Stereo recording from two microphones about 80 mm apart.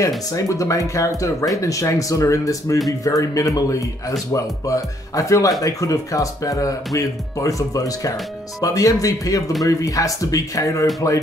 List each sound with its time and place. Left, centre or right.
0.0 s speech: left